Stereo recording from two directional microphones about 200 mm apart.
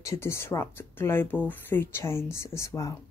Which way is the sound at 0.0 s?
15° left (ahead or behind).